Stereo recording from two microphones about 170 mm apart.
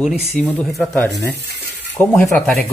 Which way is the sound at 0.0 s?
5° right (ahead or behind).